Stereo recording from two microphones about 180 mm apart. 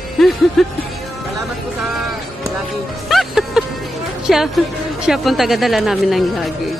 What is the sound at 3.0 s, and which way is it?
Speech, centre (ahead or behind).